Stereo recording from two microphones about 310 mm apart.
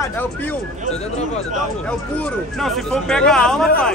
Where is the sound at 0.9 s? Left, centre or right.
Left.